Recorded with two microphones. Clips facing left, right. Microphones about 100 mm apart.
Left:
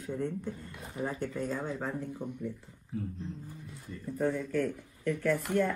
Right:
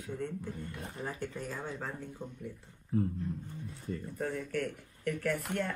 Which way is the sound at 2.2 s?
15° left (ahead or behind).